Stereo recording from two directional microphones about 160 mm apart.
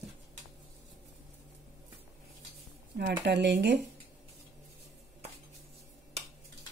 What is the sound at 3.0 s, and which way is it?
Speech, 85° right.